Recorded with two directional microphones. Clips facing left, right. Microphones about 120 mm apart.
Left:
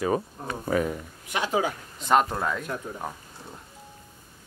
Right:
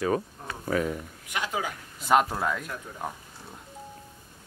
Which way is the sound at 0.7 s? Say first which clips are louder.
Left 2 dB; 10° left (ahead or behind).